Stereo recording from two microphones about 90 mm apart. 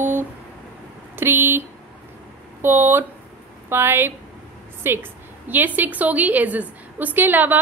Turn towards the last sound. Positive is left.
turn(degrees=-20)  # may be behind; listen again after turning